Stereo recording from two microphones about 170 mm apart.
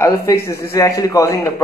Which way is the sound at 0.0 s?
15° left (ahead or behind).